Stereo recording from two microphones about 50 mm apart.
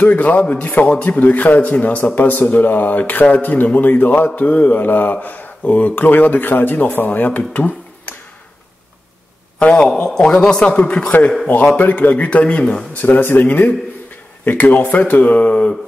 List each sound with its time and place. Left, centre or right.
0.0 s a man's voice: left
9.7 s a man's voice: centre
12.9 s a man's voice: left